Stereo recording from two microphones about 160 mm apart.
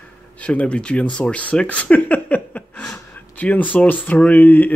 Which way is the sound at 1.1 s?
5° left (ahead or behind).